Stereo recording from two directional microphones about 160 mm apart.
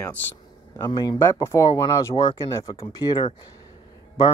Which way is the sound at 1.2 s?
15° left (ahead or behind).